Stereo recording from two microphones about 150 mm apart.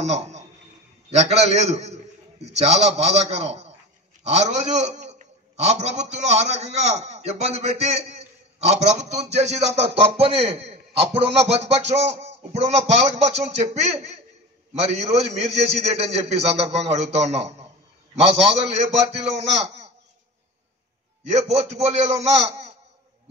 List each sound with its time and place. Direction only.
0.1 s a man's voice: 50° right (ahead or behind)
21.3 s a man's voice: 45° right (ahead or behind)